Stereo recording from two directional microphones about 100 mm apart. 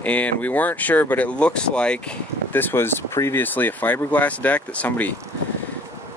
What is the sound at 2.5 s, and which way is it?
Speech, 25° left (ahead or behind).